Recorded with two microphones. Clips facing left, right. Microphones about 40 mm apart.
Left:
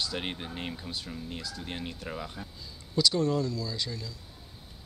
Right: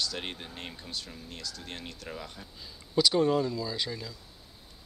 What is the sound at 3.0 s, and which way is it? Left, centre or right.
Speech, centre.